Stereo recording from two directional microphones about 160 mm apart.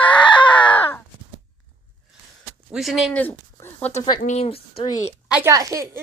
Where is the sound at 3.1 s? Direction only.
10° left (ahead or behind).